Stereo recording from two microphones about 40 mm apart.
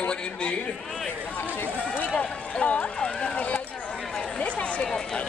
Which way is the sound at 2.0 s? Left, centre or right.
Left.